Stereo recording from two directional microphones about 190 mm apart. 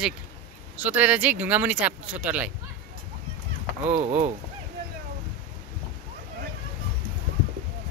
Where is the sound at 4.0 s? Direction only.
35° right (ahead or behind).